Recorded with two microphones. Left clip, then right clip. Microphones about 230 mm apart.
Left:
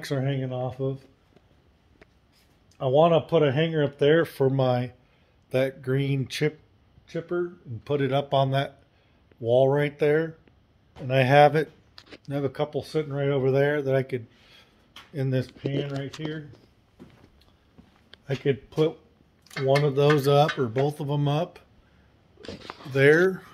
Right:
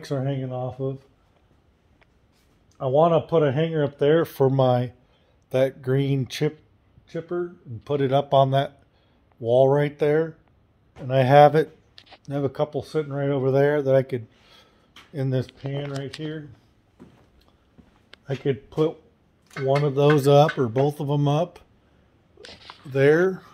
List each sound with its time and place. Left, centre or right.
0.0 s speech: centre
2.8 s speech: centre
18.2 s speech: right
22.9 s speech: centre